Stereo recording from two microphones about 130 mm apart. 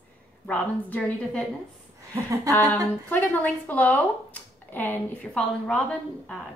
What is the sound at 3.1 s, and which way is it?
A woman's voice, 15° left (ahead or behind).